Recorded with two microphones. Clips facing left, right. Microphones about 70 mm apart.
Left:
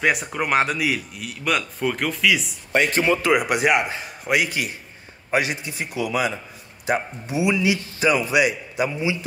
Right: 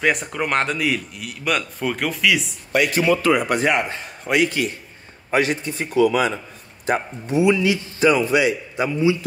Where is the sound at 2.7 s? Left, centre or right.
Left.